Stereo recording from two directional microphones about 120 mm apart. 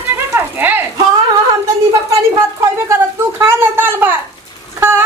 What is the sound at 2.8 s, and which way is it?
A woman's voice, 20° right (ahead or behind).